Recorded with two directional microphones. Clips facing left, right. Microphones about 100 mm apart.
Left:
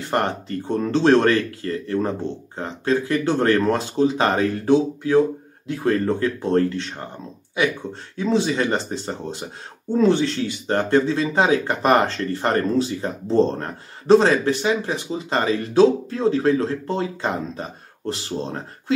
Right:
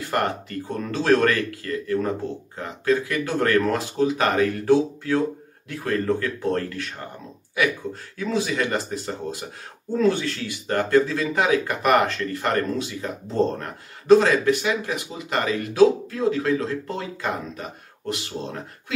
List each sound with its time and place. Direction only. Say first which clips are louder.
0.1 s speech: left 2 dB; 30° left (ahead or behind)